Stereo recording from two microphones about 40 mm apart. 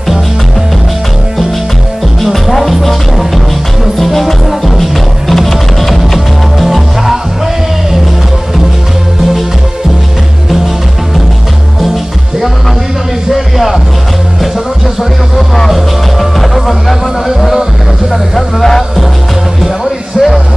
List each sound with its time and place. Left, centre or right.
2.3 s music: centre
13.3 s music: centre
15.7 s music: centre
18.1 s music: centre